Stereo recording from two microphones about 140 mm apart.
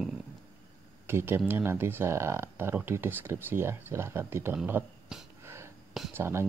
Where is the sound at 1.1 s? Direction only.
15° right (ahead or behind).